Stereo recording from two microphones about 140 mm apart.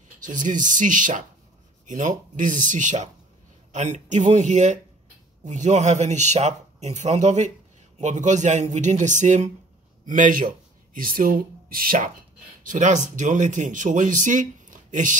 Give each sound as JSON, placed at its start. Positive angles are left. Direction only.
{"t": 0.2, "sound": "speech", "side_deg": -65}
{"t": 12.6, "sound": "speech", "side_deg": -60}